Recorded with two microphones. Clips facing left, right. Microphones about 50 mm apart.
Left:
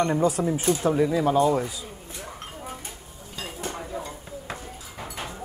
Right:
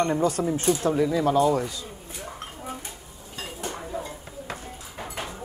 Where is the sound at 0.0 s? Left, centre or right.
Centre.